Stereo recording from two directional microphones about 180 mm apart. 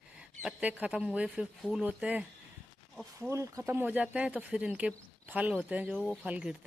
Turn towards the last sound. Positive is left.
turn(degrees=-5)  # may be behind; listen again after turning